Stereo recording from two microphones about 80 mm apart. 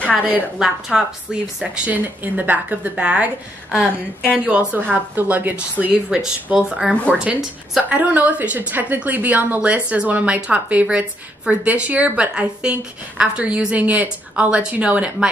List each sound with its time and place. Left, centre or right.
0.6 s a woman's voice: centre
1.6 s a woman's voice: right
4.3 s a woman's voice: centre
6.9 s speech: centre
7.2 s a woman's voice: centre